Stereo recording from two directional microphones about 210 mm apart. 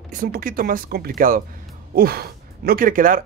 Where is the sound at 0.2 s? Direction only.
40° right (ahead or behind).